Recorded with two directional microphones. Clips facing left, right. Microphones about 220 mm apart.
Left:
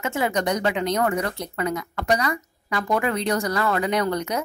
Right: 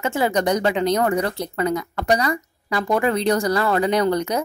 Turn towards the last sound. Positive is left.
turn(degrees=-35)  # may be behind; listen again after turning